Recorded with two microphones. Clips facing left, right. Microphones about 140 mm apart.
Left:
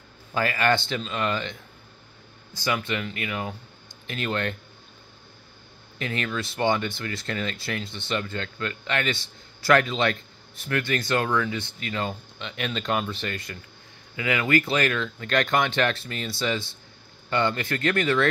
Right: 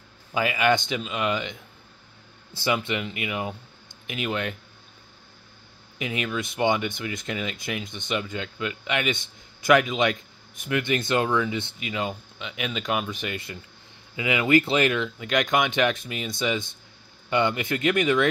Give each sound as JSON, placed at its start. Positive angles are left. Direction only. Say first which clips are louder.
{"t": 0.3, "sound": "speech", "louder": "right 1 dB", "side_deg": -10}
{"t": 5.9, "sound": "speech", "louder": "right 1 dB", "side_deg": -10}
{"t": 11.9, "sound": "speech", "louder": "even", "side_deg": -10}